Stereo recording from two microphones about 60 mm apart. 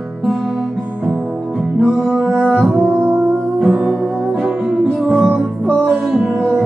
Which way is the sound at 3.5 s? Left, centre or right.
Centre.